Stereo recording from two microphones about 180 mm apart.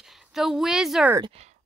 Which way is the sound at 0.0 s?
Centre (ahead or behind).